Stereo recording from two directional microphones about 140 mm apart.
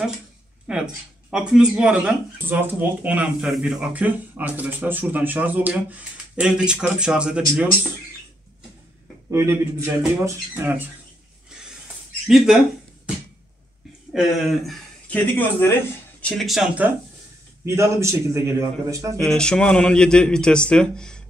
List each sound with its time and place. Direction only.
0.7 s speech: 5° right (ahead or behind)
9.3 s a man's voice: 20° right (ahead or behind)
12.3 s speech: centre (ahead or behind)
14.1 s a man's voice: centre (ahead or behind)
17.6 s a man's voice: 20° right (ahead or behind)
19.1 s a man's voice: 5° left (ahead or behind)